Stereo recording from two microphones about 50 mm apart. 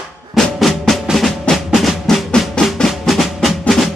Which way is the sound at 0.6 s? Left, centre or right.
Centre.